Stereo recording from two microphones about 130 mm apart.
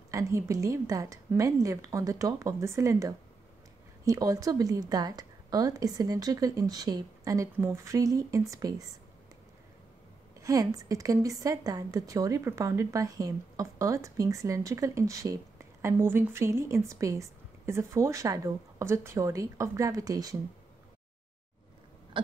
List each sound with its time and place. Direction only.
0.1 s a woman's voice: 25° right (ahead or behind)
10.4 s a woman's voice: 25° right (ahead or behind)
22.2 s throat clearing: 40° right (ahead or behind)